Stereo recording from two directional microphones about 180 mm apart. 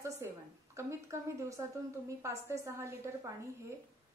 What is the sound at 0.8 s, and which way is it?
Speech, 15° right (ahead or behind).